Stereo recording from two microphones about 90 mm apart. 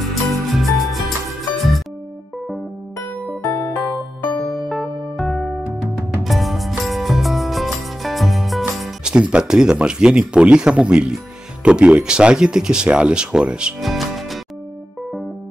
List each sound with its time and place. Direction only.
0.0 s music: centre (ahead or behind)
3.0 s music: 15° left (ahead or behind)
4.6 s music: centre (ahead or behind)
11.6 s speech: 10° right (ahead or behind)